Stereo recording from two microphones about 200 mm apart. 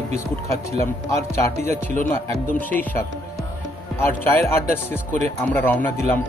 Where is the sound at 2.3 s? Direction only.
10° left (ahead or behind).